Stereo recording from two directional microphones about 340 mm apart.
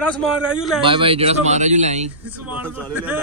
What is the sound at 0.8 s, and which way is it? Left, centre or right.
Speech, centre.